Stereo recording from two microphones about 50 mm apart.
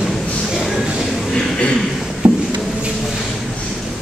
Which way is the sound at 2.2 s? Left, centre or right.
Right.